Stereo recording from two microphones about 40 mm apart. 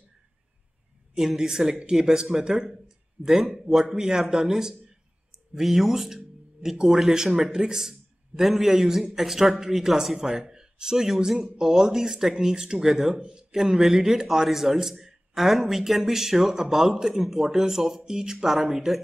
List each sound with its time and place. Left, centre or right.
1.1 s a man's voice: centre
3.3 s a man's voice: centre
18.5 s speech: centre